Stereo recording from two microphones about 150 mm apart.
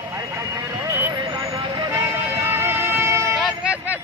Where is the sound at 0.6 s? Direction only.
20° right (ahead or behind).